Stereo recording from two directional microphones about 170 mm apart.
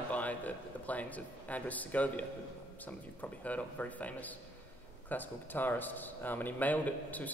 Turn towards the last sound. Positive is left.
turn(degrees=10)  # may be behind; listen again after turning